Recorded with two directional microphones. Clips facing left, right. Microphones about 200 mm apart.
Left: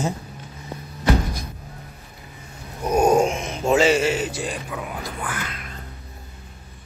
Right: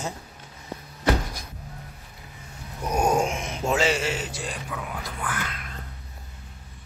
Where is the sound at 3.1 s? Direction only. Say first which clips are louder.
Left 6 dB; 30° left (ahead or behind).